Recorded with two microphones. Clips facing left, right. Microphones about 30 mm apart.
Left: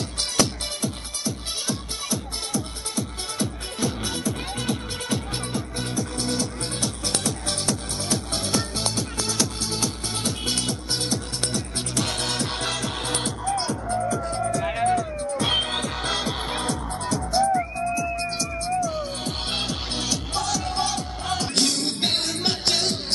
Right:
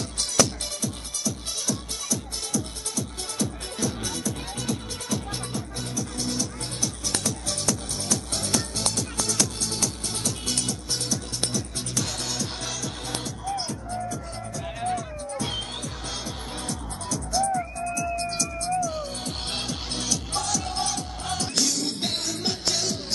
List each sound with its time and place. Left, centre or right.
0.4 s music: left
14.6 s music: left
17.6 s music: left
21.5 s music: left